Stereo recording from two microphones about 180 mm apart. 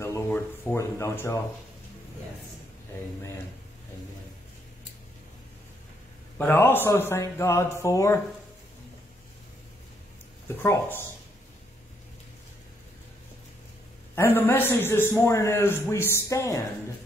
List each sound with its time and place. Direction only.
0.0 s a sound: 15° left (ahead or behind)
6.3 s a man's voice: 10° left (ahead or behind)
10.5 s a man's voice: 10° left (ahead or behind)
14.1 s a man's voice: 10° left (ahead or behind)